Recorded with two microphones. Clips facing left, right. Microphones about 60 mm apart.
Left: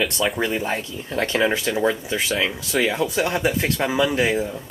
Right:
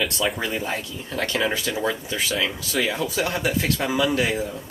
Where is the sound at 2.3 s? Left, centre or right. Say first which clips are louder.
Left 3 dB; centre.